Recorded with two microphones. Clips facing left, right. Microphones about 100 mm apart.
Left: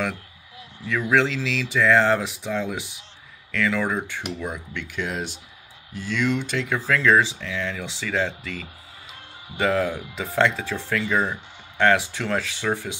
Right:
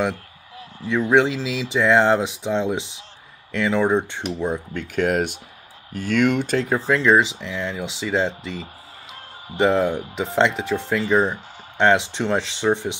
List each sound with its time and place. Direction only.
0.8 s speech: 25° right (ahead or behind)
4.8 s speech: 50° right (ahead or behind)
6.9 s speech: 20° right (ahead or behind)